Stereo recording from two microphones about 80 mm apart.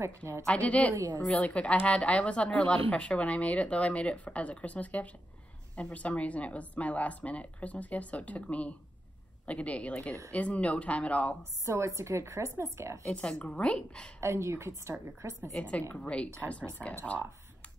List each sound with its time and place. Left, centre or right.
0.5 s a woman's voice: centre
0.9 s a woman's voice: right
1.4 s a woman's voice: centre
11.6 s a woman's voice: right
13.0 s a woman's voice: centre
14.2 s a woman's voice: right
15.5 s a woman's voice: centre